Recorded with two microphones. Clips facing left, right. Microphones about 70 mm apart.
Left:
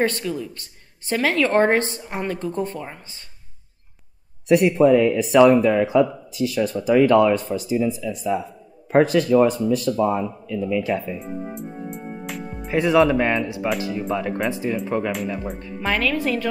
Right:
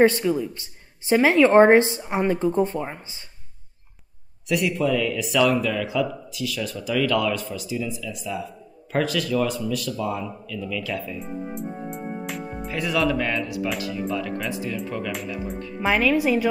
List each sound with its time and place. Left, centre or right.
0.0 s speech: centre
4.5 s speech: left
11.1 s music: centre
12.7 s speech: left
15.2 s speech: left
15.8 s speech: centre